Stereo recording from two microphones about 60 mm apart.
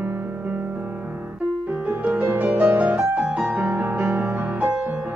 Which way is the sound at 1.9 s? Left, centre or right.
Right.